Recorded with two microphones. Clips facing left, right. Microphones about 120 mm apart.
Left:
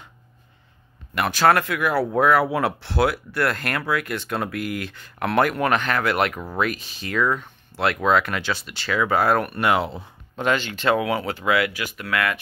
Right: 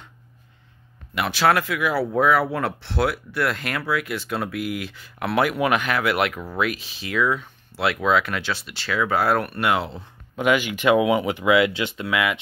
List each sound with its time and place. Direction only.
1.1 s speech: centre (ahead or behind)
10.3 s speech: 10° right (ahead or behind)